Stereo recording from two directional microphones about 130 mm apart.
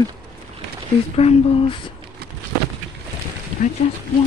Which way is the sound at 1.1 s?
50° left (ahead or behind).